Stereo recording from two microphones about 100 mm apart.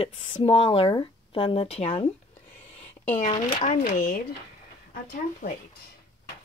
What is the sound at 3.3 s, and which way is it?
Speech, 70° left (ahead or behind).